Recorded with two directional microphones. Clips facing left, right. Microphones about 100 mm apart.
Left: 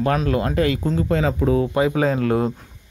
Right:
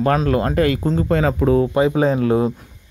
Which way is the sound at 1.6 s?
25° right (ahead or behind).